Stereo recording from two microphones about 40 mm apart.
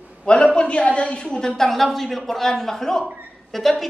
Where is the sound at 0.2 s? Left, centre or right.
Left.